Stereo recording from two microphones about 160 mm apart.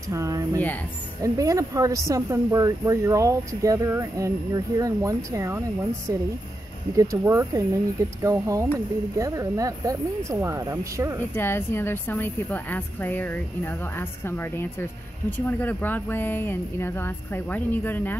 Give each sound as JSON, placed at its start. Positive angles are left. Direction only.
{"t": 0.1, "sound": "a sound", "side_deg": -20}
{"t": 1.2, "sound": "speech", "side_deg": -20}
{"t": 11.3, "sound": "a woman's voice", "side_deg": 15}